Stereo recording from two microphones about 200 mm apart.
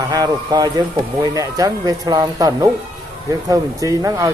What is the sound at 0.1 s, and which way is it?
Speech, 20° right (ahead or behind).